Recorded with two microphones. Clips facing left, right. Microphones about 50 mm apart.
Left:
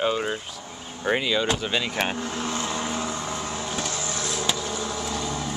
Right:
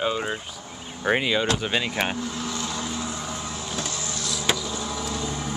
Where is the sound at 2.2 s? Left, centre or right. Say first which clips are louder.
Left 2 dB; left.